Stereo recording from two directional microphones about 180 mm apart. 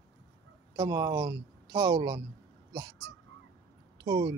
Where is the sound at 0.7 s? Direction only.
15° right (ahead or behind).